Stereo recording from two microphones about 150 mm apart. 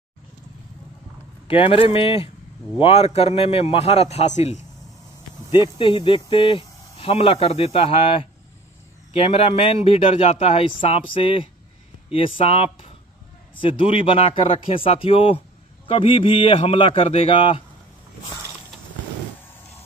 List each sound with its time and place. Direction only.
1.5 s a man's voice: 40° left (ahead or behind)
5.5 s a man's voice: 30° left (ahead or behind)